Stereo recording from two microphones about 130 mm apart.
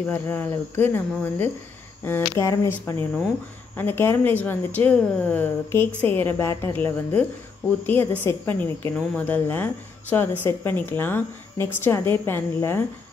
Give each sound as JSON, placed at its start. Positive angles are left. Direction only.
{"t": 0.1, "sound": "speech", "side_deg": 15}